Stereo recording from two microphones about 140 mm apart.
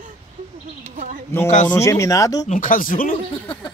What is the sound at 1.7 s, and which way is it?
Speech, 20° left (ahead or behind).